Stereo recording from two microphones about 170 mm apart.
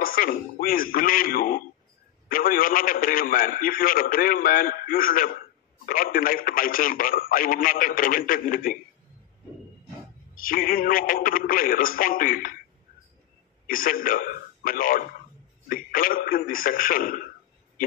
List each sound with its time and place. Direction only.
0.0 s a man's voice: 55° left (ahead or behind)
10.3 s a man's voice: 55° left (ahead or behind)
13.7 s a man's voice: 55° left (ahead or behind)